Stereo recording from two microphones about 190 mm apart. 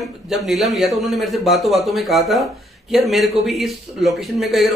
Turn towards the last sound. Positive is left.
turn(degrees=0)  # may be behind; listen again after turning